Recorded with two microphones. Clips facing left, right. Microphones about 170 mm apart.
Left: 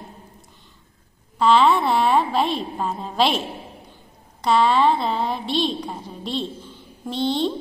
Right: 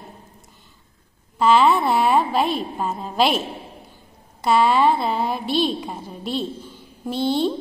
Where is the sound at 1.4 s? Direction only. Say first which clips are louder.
Even; 5° right (ahead or behind).